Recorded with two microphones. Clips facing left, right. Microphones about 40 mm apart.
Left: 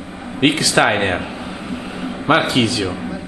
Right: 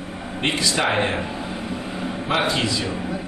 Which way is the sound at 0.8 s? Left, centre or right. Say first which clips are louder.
Left 5 dB; left.